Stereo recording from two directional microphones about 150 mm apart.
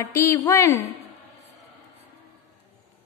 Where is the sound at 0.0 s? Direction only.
20° left (ahead or behind).